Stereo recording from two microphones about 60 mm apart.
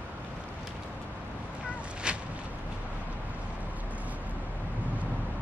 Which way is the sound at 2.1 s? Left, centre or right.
Centre.